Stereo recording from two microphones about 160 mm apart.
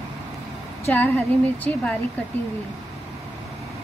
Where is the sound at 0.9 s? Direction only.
10° left (ahead or behind).